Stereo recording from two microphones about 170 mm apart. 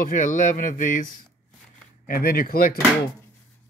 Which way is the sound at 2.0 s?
60° left (ahead or behind).